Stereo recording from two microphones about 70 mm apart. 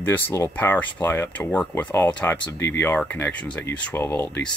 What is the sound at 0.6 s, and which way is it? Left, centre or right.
Speech, left.